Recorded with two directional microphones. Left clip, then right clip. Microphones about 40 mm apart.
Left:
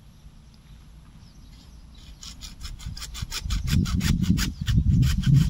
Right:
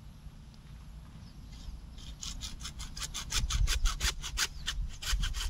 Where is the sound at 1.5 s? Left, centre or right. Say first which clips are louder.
Even; left.